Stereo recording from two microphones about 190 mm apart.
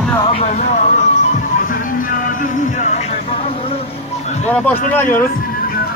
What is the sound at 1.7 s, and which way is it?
Music, 45° left (ahead or behind).